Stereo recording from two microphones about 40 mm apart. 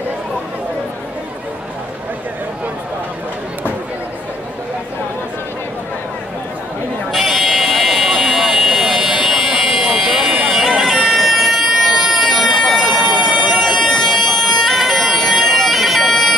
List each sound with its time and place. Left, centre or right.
7.1 s buzzer: centre
9.3 s buzzer: centre
10.8 s bagpipes: centre
13.1 s siren: right
13.9 s bagpipes: centre